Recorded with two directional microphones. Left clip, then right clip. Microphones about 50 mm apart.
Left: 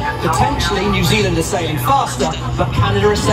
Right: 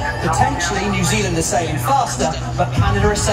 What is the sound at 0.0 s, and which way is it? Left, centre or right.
Speech, right.